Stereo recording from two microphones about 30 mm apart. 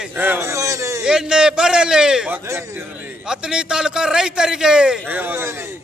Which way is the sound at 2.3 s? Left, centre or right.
Right.